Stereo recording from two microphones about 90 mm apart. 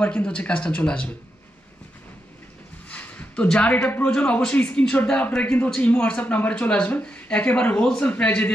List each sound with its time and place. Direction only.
0.0 s speech: 15° left (ahead or behind)
2.9 s a sound: 15° left (ahead or behind)
3.4 s speech: 15° left (ahead or behind)